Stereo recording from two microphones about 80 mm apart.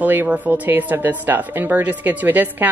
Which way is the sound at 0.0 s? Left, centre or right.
Right.